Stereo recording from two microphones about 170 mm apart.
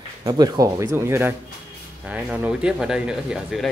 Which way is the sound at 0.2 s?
25° right (ahead or behind).